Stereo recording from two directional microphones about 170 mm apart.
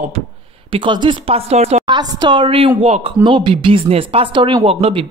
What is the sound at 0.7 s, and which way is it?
Speech, 30° right (ahead or behind).